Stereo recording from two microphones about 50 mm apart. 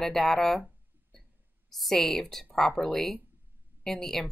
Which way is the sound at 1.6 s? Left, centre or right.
Centre.